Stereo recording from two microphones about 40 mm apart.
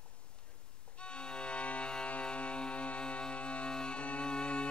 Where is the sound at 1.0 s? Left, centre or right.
Left.